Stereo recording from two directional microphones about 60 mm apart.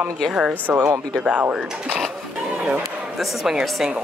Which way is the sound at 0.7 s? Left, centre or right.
Right.